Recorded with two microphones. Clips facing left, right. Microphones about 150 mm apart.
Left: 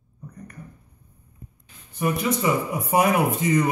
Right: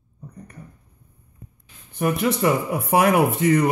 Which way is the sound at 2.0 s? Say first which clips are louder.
Right 3 dB; 60° right (ahead or behind).